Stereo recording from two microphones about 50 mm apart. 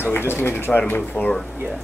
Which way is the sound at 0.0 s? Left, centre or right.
Left.